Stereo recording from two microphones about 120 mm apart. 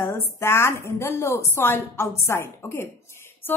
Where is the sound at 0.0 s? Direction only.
20° left (ahead or behind).